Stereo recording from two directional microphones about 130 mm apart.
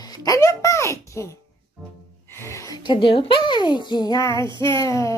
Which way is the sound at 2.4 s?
20° left (ahead or behind).